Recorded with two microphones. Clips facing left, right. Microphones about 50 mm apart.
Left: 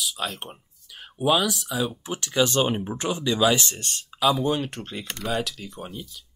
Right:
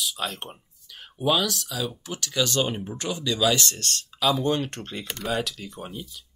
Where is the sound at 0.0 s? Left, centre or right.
Centre.